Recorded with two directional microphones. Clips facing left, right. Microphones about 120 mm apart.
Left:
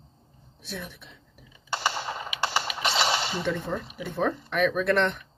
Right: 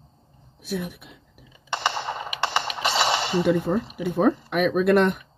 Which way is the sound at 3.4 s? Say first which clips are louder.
Right 8 dB; 10° right (ahead or behind).